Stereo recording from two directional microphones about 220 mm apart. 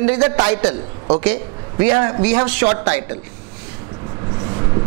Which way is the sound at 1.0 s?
20° right (ahead or behind).